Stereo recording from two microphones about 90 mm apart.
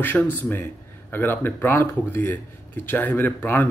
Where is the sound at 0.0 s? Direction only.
20° left (ahead or behind).